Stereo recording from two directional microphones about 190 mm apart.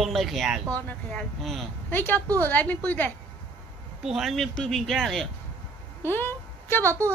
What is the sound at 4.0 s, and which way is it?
Speech, centre (ahead or behind).